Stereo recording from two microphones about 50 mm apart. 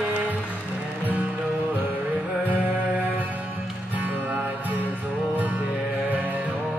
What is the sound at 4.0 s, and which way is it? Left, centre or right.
Music, right.